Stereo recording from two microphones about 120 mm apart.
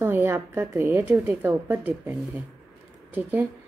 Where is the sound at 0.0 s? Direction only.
20° right (ahead or behind).